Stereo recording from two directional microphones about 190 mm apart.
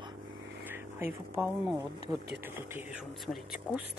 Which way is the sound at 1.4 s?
Centre (ahead or behind).